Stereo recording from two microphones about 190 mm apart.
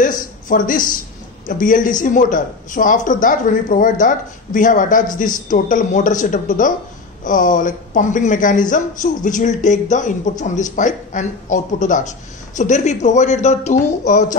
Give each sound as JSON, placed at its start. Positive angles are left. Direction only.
{"t": 0.0, "sound": "speech", "side_deg": 45}